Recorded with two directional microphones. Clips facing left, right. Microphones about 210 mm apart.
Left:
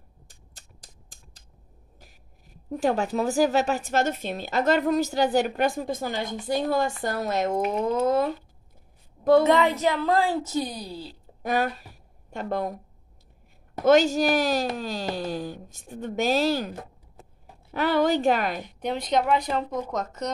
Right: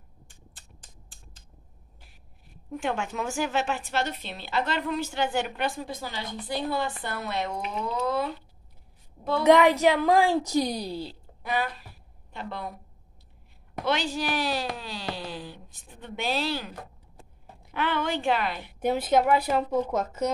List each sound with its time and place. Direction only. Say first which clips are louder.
0.3 s a sound: right 1 dB; 40° left (ahead or behind)
2.0 s a woman's voice: left 4 dB; 40° left (ahead or behind)
9.4 s a woman's voice: right 2 dB; 15° right (ahead or behind)
11.4 s speech: left 4 dB; 45° left (ahead or behind)
13.8 s speech: left 9 dB; 45° left (ahead or behind)
17.7 s a woman's voice: left 6 dB; 40° left (ahead or behind)
18.6 s a woman's voice: right 3 dB; 5° right (ahead or behind)